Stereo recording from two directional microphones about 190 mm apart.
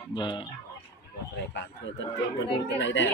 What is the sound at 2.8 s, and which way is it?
Speech, 75° left (ahead or behind).